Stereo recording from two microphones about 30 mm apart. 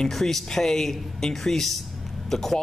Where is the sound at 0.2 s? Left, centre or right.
Centre.